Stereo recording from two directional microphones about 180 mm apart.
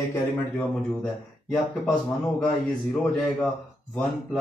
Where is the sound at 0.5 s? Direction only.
5° left (ahead or behind).